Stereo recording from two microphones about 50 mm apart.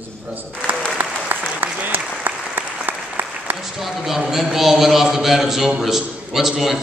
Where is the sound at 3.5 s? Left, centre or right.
Centre.